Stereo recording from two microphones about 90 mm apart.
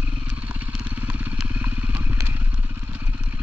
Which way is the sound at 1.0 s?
10° right (ahead or behind).